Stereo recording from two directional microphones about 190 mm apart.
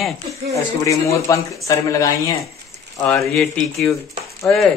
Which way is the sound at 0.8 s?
15° left (ahead or behind).